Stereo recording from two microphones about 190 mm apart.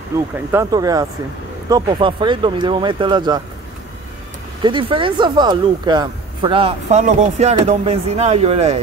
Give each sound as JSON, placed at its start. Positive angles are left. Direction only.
{"t": 0.5, "sound": "speech", "side_deg": -15}
{"t": 4.6, "sound": "speech", "side_deg": -25}